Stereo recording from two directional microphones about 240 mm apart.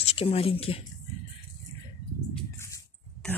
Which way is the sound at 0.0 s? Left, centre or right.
Left.